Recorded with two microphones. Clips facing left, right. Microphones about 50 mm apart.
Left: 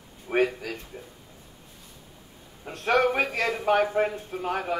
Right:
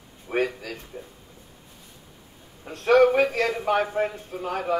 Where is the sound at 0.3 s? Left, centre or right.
Centre.